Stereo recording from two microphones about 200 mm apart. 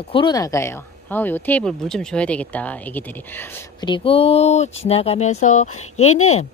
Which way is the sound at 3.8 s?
25° left (ahead or behind).